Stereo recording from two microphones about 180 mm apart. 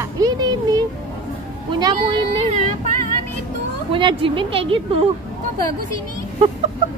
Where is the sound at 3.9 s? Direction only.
30° right (ahead or behind).